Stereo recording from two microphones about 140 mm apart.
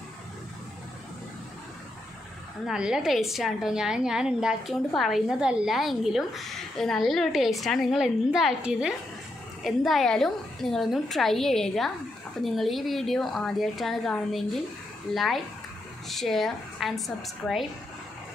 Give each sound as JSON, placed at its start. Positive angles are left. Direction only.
{"t": 2.6, "sound": "a woman's voice", "side_deg": -5}